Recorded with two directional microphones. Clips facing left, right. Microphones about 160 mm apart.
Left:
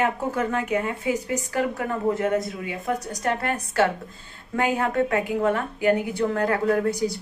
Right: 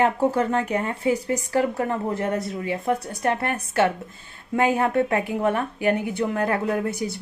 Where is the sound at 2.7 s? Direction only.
25° right (ahead or behind).